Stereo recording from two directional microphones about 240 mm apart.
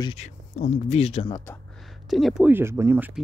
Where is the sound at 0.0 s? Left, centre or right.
Left.